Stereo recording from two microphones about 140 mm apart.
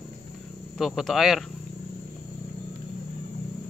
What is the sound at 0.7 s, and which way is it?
Speech, centre (ahead or behind).